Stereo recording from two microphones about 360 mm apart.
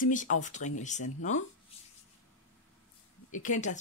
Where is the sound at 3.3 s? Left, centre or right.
Left.